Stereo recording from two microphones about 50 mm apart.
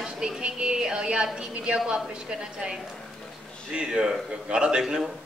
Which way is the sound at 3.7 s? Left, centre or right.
Centre.